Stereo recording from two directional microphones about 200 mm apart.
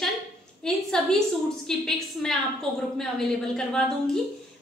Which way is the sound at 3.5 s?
5° left (ahead or behind).